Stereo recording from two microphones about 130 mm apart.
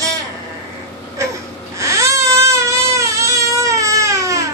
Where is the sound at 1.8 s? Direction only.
20° right (ahead or behind).